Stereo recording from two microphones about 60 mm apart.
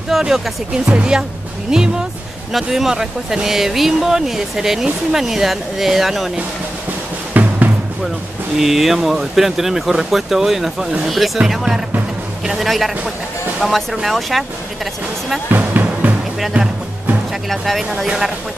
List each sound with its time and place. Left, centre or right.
0.1 s speech: centre
7.3 s music: right
8.5 s speech: centre
15.5 s music: right
16.5 s speech: right
17.5 s speech: centre
18.0 s speech: centre